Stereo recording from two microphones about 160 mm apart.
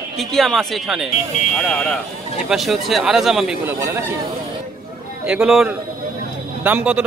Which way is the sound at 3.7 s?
15° right (ahead or behind).